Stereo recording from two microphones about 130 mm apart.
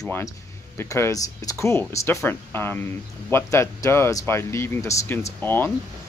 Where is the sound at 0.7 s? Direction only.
20° left (ahead or behind).